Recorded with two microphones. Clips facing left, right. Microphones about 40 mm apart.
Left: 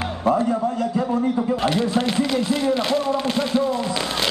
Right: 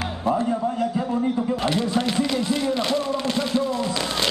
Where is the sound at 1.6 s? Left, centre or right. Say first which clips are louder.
Left 2 dB; centre.